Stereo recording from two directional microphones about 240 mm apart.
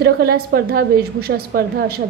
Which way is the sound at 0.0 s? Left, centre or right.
Right.